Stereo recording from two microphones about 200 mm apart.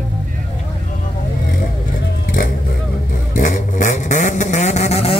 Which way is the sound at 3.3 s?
40° left (ahead or behind).